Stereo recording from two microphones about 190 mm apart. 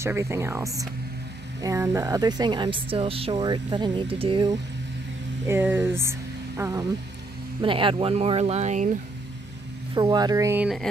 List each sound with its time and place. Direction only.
0.0 s speech: 15° right (ahead or behind)
5.5 s speech: 10° right (ahead or behind); by 8.9 s 40° right (ahead or behind)
9.9 s speech: 20° right (ahead or behind)